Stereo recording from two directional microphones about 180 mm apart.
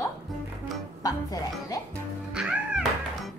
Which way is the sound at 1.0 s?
20° left (ahead or behind).